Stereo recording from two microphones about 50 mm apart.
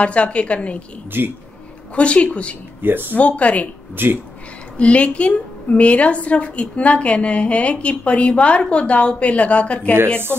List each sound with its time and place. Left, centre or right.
0.0 s a woman's voice: left
1.1 s speech: right
2.0 s a woman's voice: left
2.8 s speech: right
3.2 s a woman's voice: left
3.9 s speech: right
4.7 s a woman's voice: left